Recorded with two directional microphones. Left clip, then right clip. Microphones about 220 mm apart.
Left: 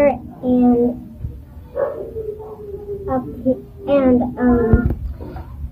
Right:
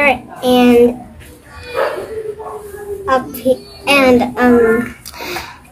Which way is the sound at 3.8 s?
50° right (ahead or behind).